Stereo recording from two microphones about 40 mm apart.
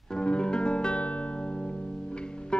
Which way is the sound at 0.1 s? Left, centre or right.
Left.